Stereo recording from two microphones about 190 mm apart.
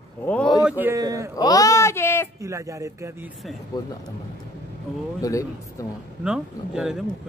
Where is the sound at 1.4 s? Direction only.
20° left (ahead or behind).